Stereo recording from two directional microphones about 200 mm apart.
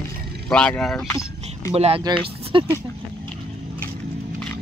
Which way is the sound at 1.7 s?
30° right (ahead or behind).